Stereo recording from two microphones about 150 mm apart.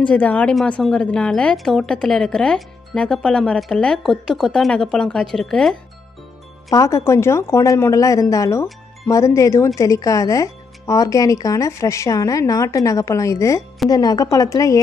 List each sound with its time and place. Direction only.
0.0 s a woman's voice: 10° left (ahead or behind)
6.7 s speech: 20° left (ahead or behind)